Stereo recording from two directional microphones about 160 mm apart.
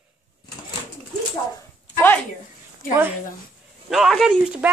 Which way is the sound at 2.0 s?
10° left (ahead or behind).